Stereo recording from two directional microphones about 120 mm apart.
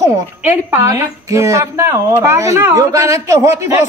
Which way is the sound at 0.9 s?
25° right (ahead or behind).